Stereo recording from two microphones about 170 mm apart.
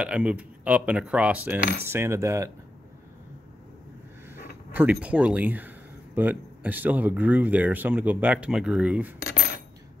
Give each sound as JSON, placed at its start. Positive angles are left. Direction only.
{"t": 0.0, "sound": "speech", "side_deg": -5}
{"t": 4.7, "sound": "speech", "side_deg": -10}